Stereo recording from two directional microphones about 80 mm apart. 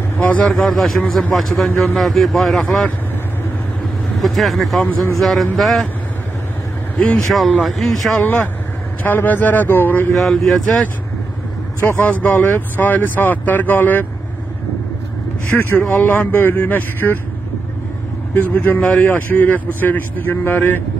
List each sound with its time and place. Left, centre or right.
0.2 s a man's voice: centre
2.6 s a man's voice: centre
4.2 s speech: centre
7.3 s speech: centre
8.2 s speech: left
10.1 s speech: centre
12.0 s speech: left
15.4 s speech: left
18.3 s speech: left